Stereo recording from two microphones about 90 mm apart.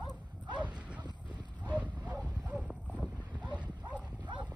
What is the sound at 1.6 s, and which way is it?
Dog, 15° right (ahead or behind).